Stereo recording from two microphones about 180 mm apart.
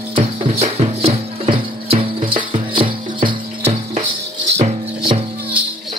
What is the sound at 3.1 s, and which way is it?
Cricket, 30° right (ahead or behind).